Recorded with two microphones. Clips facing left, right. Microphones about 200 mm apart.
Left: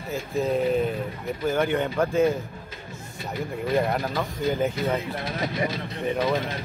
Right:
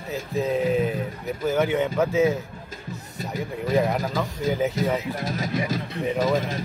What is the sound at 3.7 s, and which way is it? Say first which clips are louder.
Speech: right 2 dB; centre (ahead or behind).